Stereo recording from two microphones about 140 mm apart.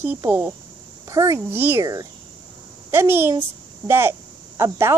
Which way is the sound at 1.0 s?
25° right (ahead or behind).